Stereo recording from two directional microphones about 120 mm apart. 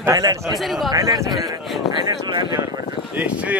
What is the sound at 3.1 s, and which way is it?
Speech, 10° right (ahead or behind).